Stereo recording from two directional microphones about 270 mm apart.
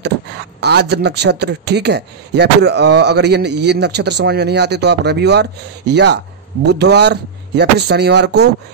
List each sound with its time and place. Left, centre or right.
0.6 s a man's voice: right